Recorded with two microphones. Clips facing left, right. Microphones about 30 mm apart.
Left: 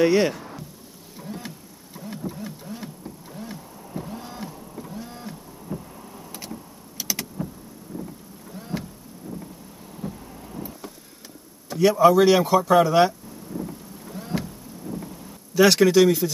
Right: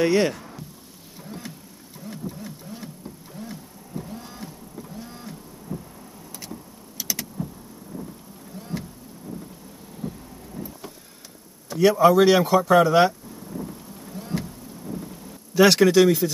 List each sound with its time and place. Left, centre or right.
0.0 s speech: centre
1.1 s a sound: centre
3.3 s vehicle: centre
5.0 s a sound: centre
5.7 s vehicle: left
6.5 s power windows: centre
8.5 s vehicle: centre
10.0 s vehicle: centre
11.7 s a sound: centre
15.5 s speech: centre